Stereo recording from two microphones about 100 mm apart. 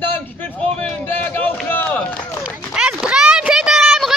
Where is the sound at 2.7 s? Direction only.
10° right (ahead or behind).